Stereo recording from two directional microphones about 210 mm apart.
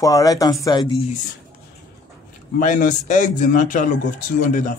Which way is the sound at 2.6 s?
40° left (ahead or behind).